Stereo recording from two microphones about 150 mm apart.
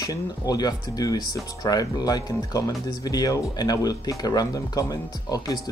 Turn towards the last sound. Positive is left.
turn(degrees=25)  # may be behind; listen again after turning